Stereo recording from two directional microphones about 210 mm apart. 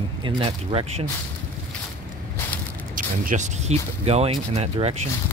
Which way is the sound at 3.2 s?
35° right (ahead or behind).